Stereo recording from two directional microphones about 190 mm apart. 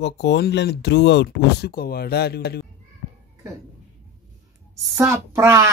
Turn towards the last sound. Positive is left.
turn(degrees=-15)  # may be behind; listen again after turning